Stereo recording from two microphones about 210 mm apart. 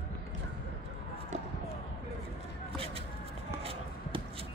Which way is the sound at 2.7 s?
25° right (ahead or behind).